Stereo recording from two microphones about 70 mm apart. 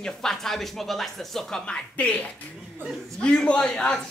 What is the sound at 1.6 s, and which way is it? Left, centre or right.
A man's voice, centre.